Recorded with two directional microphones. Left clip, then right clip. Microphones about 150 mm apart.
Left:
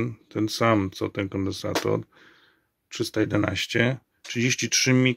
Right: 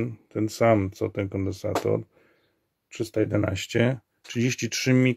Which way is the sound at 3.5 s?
30° right (ahead or behind).